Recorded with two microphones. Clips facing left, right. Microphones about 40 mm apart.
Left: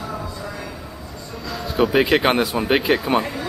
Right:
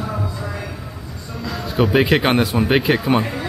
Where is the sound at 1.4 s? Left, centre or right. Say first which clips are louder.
Right 1 dB; centre.